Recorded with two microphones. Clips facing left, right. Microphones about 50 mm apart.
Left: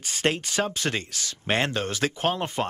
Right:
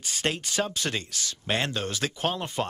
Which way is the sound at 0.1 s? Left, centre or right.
Left.